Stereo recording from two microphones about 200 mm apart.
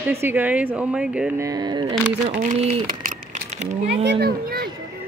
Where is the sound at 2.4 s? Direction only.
40° right (ahead or behind).